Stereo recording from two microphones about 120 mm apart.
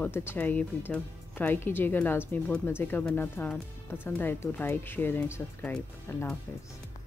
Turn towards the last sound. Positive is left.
turn(degrees=15)  # may be behind; listen again after turning